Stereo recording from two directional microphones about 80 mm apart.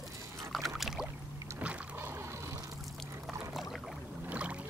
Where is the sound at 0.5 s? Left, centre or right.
Centre.